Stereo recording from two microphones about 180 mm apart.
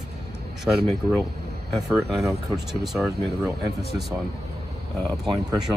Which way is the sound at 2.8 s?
Centre (ahead or behind).